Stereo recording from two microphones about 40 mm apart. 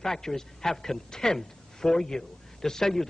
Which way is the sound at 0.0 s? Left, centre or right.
Centre.